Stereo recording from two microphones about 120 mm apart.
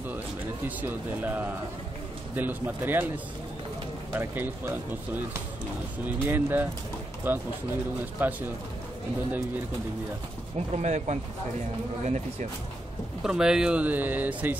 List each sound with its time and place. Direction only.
0.7 s speech: 15° right (ahead or behind)
4.1 s speech: 20° right (ahead or behind)
6.2 s speech: 15° right (ahead or behind)
10.7 s speech: 70° right (ahead or behind)
12.0 s speech: 85° right
13.2 s speech: 5° right (ahead or behind)